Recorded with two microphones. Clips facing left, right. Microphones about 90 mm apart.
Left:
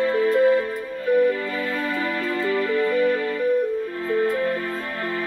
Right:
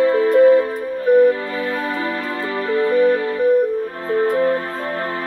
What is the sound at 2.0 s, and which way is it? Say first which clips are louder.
Music: right 1 dB; 35° right (ahead or behind).